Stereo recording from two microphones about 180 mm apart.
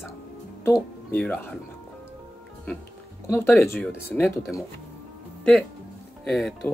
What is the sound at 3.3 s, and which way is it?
Speech, 15° left (ahead or behind).